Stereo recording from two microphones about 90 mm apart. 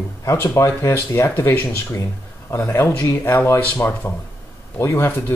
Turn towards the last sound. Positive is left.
turn(degrees=25)  # may be behind; listen again after turning